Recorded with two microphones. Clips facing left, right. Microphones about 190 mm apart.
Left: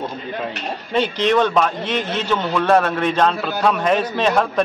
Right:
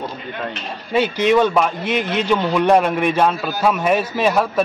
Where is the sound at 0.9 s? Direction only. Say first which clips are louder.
Right 2 dB; 10° right (ahead or behind).